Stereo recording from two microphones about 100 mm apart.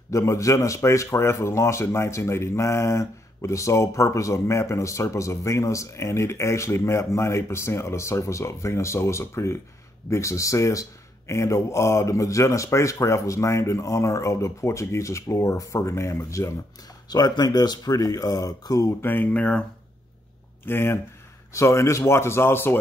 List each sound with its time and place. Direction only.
0.1 s speech: 30° left (ahead or behind)
17.1 s speech: 40° left (ahead or behind); by 19.6 s 10° left (ahead or behind)
20.6 s speech: 25° left (ahead or behind)